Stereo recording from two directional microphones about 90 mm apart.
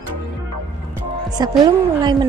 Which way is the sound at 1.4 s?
50° right (ahead or behind).